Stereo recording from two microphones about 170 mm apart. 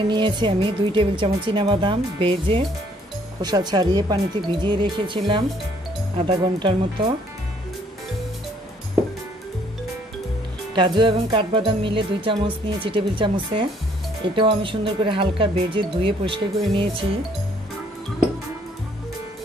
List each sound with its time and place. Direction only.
0.1 s music: 25° right (ahead or behind)
6.1 s speech: 30° right (ahead or behind)
10.7 s music: 25° right (ahead or behind)
14.2 s speech: 30° right (ahead or behind)